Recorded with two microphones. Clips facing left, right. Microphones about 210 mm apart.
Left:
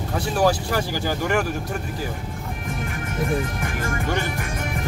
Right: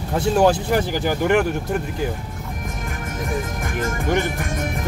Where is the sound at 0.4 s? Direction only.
20° right (ahead or behind).